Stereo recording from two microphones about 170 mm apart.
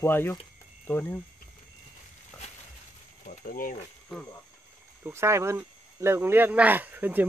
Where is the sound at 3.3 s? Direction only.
55° left (ahead or behind).